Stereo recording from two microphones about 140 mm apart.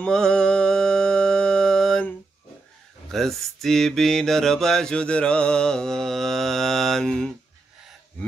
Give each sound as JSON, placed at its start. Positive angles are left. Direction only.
{"t": 0.0, "sound": "mantra", "side_deg": 5}